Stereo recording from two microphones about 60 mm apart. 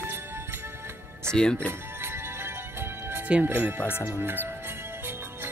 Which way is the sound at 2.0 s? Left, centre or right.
Right.